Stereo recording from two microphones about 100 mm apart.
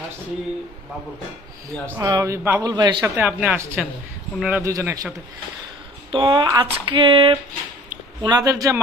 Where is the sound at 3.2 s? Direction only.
15° right (ahead or behind).